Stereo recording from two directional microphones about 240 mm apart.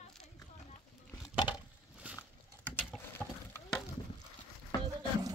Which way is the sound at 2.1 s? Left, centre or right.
Centre.